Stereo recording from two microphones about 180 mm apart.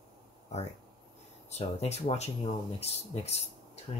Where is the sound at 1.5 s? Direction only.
35° left (ahead or behind).